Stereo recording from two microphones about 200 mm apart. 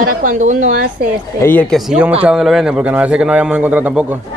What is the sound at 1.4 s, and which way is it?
A man's voice, 10° left (ahead or behind).